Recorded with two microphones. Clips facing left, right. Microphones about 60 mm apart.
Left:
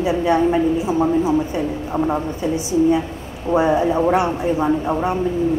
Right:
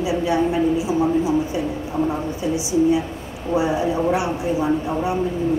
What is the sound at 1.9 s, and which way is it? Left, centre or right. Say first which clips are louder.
Speech: left 3 dB; left.